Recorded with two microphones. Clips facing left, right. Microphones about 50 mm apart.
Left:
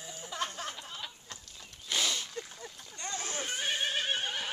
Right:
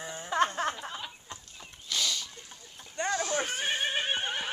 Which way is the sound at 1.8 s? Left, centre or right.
Left.